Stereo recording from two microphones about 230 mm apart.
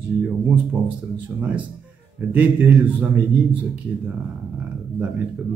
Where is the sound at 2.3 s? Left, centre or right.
Centre.